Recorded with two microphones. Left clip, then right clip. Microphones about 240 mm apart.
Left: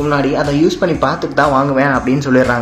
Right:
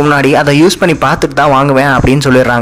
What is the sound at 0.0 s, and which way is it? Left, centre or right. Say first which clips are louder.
A man's voice: right 7 dB; right.